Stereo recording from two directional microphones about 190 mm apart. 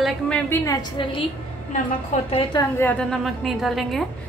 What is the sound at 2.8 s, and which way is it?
A woman's voice, 5° left (ahead or behind).